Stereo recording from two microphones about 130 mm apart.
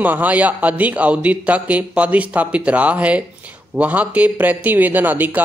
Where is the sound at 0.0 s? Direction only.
15° right (ahead or behind).